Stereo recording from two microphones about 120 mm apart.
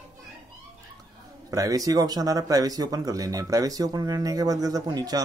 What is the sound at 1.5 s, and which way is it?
Speech, 30° right (ahead or behind).